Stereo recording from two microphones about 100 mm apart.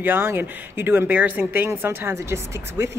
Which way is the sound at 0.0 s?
20° right (ahead or behind).